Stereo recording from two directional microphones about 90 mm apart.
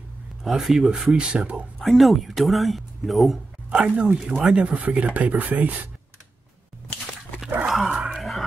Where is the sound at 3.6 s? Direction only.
10° right (ahead or behind).